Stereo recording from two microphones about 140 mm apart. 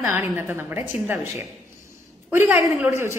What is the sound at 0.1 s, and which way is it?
A woman's voice, 15° right (ahead or behind).